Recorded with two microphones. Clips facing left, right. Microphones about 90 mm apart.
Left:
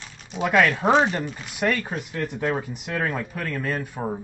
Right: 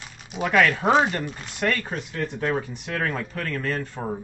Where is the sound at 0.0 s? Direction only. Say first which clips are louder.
Even; 5° right (ahead or behind).